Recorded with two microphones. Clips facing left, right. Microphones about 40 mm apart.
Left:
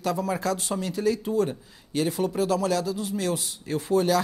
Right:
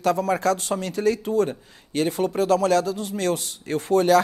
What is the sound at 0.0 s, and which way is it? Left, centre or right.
A man's voice, right.